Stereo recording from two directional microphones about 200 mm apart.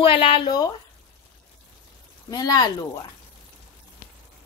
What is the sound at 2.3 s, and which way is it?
Speech, 20° left (ahead or behind).